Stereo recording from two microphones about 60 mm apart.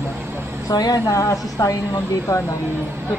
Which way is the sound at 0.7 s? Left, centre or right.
Left.